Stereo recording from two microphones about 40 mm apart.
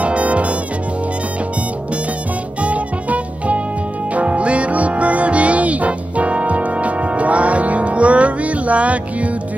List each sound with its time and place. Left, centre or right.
0.0 s music: right
2.6 s music: right